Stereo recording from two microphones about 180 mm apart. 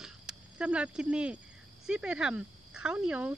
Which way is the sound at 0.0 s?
5° right (ahead or behind).